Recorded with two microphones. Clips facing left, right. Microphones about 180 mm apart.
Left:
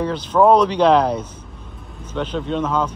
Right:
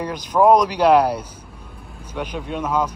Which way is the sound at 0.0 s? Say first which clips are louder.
Left 1 dB; 10° right (ahead or behind).